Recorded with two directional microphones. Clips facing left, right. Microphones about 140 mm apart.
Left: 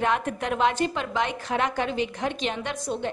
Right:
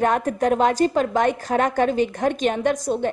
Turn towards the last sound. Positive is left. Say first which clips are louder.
# right 8 dB
turn(degrees=-45)  # may be behind; listen again after turning